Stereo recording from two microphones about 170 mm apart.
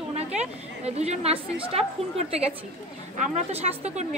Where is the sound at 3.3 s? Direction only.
40° right (ahead or behind).